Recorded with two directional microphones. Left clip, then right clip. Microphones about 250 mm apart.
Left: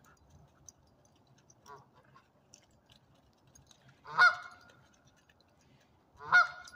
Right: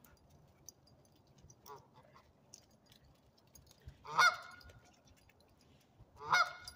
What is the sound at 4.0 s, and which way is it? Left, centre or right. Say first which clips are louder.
Goose: left 5 dB; centre.